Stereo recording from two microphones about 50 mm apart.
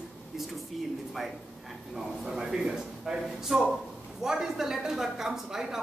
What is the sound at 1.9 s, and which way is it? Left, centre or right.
A woman's voice, centre.